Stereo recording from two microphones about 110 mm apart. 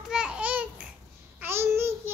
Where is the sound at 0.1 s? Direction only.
10° right (ahead or behind).